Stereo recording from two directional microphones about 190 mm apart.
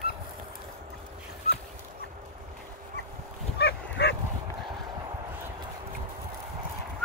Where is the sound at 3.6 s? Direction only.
60° left (ahead or behind).